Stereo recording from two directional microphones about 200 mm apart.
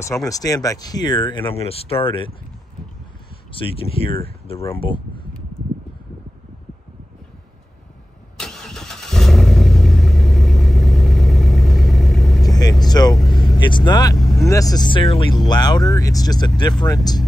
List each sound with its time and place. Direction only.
0.0 s speech: 15° left (ahead or behind)
3.5 s speech: 25° left (ahead or behind)
8.4 s vehicle: centre (ahead or behind)
12.4 s vehicle: 20° left (ahead or behind)
13.1 s vehicle: centre (ahead or behind)
13.6 s speech: 25° left (ahead or behind)
14.1 s speech: centre (ahead or behind)
14.5 s speech: 20° left (ahead or behind)